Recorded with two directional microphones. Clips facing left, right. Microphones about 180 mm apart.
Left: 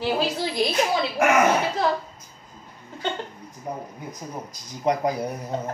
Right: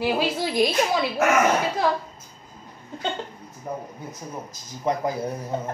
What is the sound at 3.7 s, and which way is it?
Speech, 15° left (ahead or behind).